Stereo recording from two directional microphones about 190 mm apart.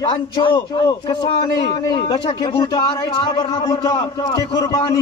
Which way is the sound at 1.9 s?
25° left (ahead or behind).